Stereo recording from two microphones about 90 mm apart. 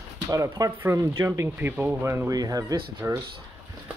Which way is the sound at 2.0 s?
30° right (ahead or behind).